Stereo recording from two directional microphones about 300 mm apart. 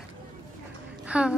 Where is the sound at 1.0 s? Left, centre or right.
Centre.